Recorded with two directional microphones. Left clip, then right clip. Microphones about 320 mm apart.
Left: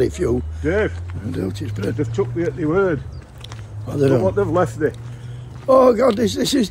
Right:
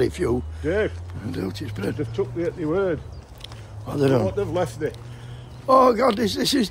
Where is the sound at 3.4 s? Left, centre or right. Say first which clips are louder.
Left 2 dB; centre.